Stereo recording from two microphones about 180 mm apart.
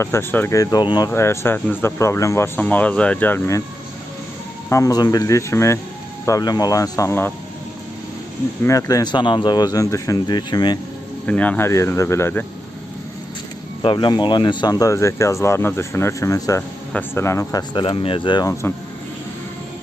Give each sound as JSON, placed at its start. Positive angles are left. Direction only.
{"t": 0.0, "sound": "speech", "side_deg": 15}
{"t": 4.6, "sound": "speech", "side_deg": 15}
{"t": 8.6, "sound": "speech", "side_deg": 20}
{"t": 11.2, "sound": "speech", "side_deg": 10}
{"t": 13.8, "sound": "speech", "side_deg": 25}